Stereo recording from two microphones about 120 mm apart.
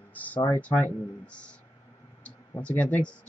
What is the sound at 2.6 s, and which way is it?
Speech, 10° left (ahead or behind).